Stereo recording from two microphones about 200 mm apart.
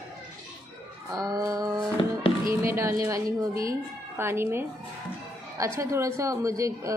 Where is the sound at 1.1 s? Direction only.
15° right (ahead or behind).